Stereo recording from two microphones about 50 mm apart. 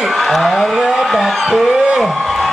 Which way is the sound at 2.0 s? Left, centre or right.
Centre.